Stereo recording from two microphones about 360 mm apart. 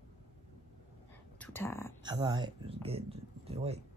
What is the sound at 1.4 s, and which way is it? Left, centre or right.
Speech, centre.